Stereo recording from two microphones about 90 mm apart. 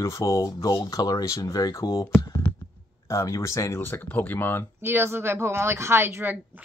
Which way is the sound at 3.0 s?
35° left (ahead or behind).